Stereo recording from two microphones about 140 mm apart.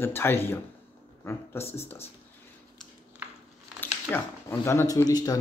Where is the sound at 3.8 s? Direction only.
15° left (ahead or behind).